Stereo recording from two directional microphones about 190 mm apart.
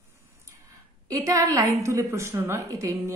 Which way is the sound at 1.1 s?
20° right (ahead or behind).